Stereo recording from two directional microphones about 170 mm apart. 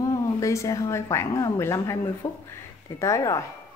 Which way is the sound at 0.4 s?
20° left (ahead or behind).